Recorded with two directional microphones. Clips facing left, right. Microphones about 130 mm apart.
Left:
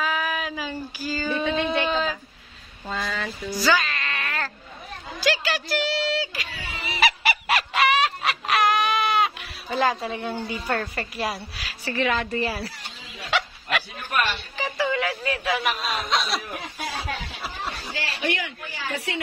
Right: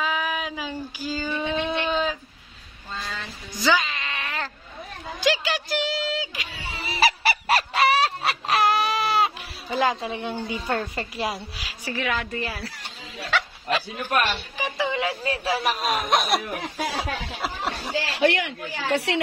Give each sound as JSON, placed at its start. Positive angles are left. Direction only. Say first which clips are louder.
{"t": 0.0, "sound": "child singing", "louder": "even", "side_deg": -15}
{"t": 1.7, "sound": "a sound", "louder": "left 1 dB", "side_deg": -5}
{"t": 3.6, "sound": "a sound", "louder": "right 1 dB", "side_deg": -15}
{"t": 5.2, "sound": "a woman's voice", "louder": "right 1 dB", "side_deg": -15}
{"t": 6.8, "sound": "goose", "louder": "right 1 dB", "side_deg": -35}
{"t": 9.7, "sound": "a woman's voice", "louder": "even", "side_deg": -15}
{"t": 12.0, "sound": "a woman's voice", "louder": "left 4 dB", "side_deg": 0}
{"t": 13.7, "sound": "a man's voice", "louder": "right 3 dB", "side_deg": -25}
{"t": 15.2, "sound": "speech", "louder": "right 1 dB", "side_deg": -30}
{"t": 16.9, "sound": "speech", "louder": "right 2 dB", "side_deg": -80}